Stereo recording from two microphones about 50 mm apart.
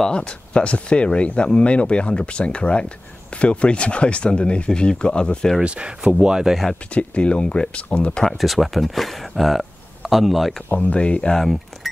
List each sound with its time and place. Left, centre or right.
0.0 s speech: centre
5.6 s speech: right
6.9 s speech: left
8.3 s speech: centre
10.7 s speech: left
11.3 s speech: centre